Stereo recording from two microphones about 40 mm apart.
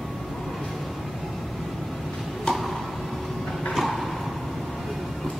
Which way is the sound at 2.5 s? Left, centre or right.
Centre.